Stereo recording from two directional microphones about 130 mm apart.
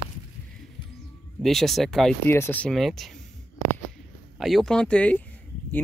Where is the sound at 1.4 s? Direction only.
Centre (ahead or behind).